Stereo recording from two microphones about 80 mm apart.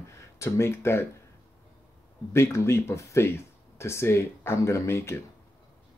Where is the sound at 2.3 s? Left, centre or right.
Left.